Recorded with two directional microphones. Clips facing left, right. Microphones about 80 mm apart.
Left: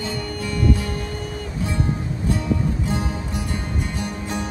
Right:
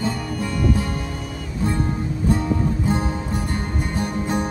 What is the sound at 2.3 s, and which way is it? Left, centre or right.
Music, right.